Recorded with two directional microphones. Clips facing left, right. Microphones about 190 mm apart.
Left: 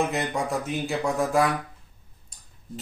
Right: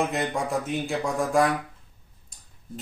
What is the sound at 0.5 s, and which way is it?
Speech, centre (ahead or behind).